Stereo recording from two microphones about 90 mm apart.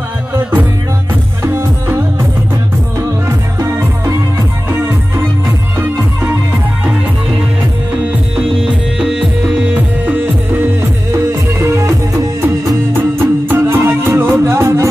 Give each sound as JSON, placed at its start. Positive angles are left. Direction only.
{"t": 1.4, "sound": "music", "side_deg": -25}
{"t": 3.0, "sound": "music", "side_deg": -30}
{"t": 8.4, "sound": "music", "side_deg": -10}
{"t": 9.8, "sound": "music", "side_deg": -20}